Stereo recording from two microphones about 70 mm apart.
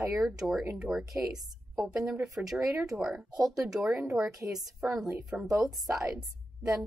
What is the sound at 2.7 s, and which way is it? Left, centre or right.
Speech, right.